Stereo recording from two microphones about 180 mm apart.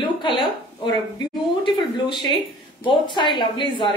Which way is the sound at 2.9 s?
25° left (ahead or behind).